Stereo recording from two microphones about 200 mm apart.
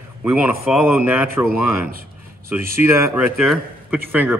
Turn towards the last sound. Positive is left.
turn(degrees=-10)  # may be behind; listen again after turning